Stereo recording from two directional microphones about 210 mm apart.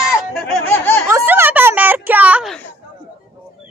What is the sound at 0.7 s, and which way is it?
Snicker, 10° left (ahead or behind).